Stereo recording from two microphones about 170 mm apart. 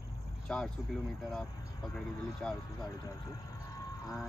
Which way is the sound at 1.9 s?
5° left (ahead or behind).